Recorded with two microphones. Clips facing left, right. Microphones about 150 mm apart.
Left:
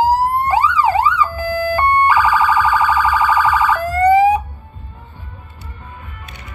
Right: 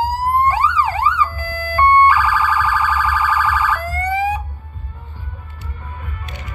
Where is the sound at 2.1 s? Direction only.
20° left (ahead or behind).